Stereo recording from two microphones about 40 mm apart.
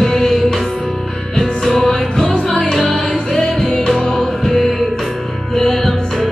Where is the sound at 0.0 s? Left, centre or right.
Centre.